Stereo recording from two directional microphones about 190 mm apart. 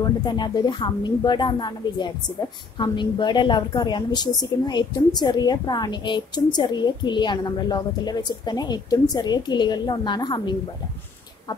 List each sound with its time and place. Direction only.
0.2 s a woman's voice: 20° left (ahead or behind)